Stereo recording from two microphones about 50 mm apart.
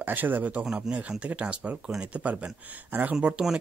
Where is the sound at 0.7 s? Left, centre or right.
Right.